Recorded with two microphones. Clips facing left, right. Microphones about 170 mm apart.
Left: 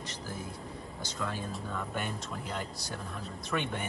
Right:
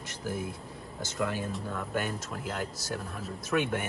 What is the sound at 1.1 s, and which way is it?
Speech, 5° right (ahead or behind).